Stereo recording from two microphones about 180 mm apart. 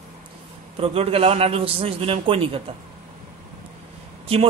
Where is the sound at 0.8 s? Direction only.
35° right (ahead or behind).